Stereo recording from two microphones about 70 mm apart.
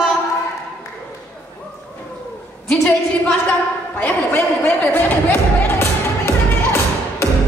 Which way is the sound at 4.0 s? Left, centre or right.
Left.